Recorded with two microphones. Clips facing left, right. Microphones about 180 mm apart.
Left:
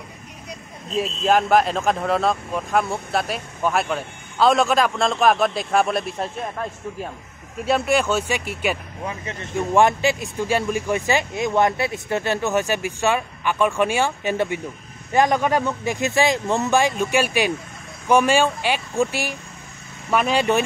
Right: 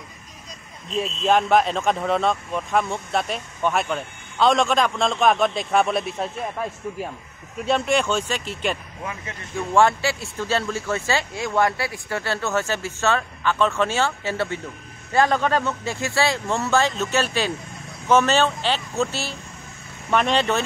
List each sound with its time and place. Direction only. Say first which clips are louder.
0.9 s speech: left 1 dB; centre (ahead or behind)